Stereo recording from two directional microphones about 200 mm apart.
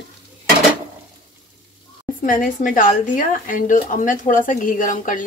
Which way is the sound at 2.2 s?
40° left (ahead or behind).